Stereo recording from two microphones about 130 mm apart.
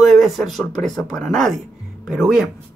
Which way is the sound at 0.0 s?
Centre (ahead or behind).